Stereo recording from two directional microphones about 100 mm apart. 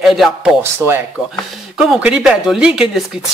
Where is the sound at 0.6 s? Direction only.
25° right (ahead or behind).